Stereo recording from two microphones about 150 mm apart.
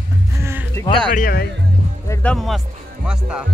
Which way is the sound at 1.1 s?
70° left (ahead or behind).